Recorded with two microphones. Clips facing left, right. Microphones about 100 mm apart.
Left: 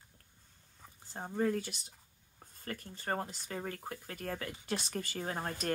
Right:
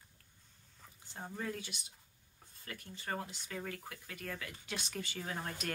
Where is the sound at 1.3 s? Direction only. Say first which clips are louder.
Left 10 dB; 45° left (ahead or behind).